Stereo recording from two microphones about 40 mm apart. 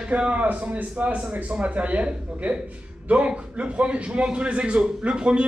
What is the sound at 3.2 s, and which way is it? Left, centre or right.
A man's voice, right.